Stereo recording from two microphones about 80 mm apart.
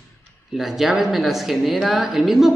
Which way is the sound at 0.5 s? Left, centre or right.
Centre.